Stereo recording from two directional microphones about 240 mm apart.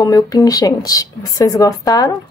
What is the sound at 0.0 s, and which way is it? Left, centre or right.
Speech, centre.